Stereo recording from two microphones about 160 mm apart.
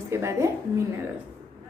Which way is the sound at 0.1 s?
20° right (ahead or behind).